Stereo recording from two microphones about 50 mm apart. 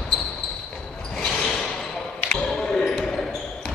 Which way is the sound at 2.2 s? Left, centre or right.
Centre.